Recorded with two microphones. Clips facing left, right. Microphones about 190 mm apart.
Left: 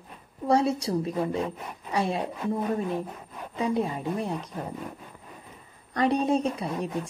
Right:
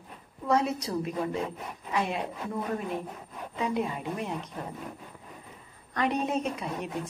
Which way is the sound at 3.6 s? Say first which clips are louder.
Left 3 dB; 35° left (ahead or behind).